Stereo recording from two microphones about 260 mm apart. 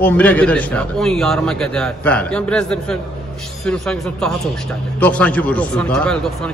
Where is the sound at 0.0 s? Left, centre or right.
Centre.